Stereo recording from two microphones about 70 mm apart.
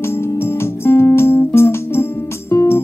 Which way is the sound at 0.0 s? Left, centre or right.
Left.